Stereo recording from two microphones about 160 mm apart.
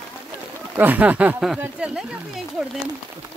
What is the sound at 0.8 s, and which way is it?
Speech, 10° right (ahead or behind).